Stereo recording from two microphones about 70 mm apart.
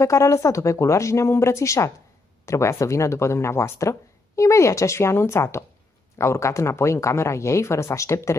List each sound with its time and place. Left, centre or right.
0.0 s speech: left